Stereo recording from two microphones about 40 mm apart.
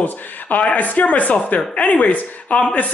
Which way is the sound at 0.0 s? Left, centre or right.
Left.